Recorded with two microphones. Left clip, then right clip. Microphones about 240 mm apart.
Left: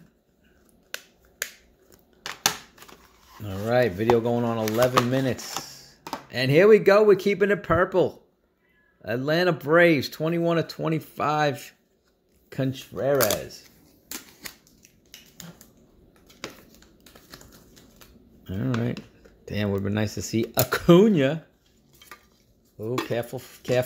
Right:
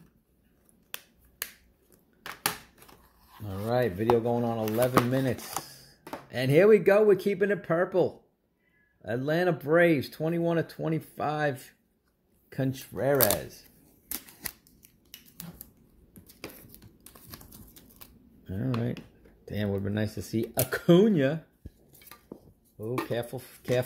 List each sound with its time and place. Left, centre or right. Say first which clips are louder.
3.3 s speech: left 6 dB; centre
12.7 s speech: left 3 dB; centre
14.8 s finger snapping: left 4 dB; right
17.0 s typewriter: left 3 dB; right
18.4 s a sound: left 4 dB; centre
19.4 s speech: left 4 dB; centre
22.8 s dishes: left 4 dB; centre